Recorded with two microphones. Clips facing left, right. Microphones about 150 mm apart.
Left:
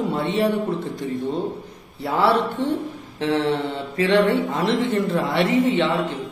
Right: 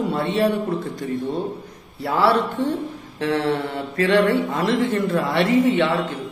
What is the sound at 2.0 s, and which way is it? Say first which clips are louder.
Speech: right 1 dB; 20° left (ahead or behind).